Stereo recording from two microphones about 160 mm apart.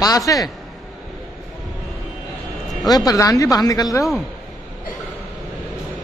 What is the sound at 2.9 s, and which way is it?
A woman's voice, 25° left (ahead or behind).